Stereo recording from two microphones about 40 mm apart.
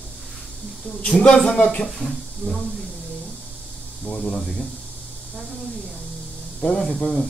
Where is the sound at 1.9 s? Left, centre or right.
Centre.